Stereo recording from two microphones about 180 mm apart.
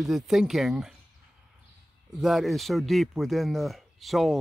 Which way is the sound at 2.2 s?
Centre (ahead or behind).